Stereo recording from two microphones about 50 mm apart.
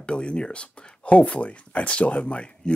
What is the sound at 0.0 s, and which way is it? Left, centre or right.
Speech, left.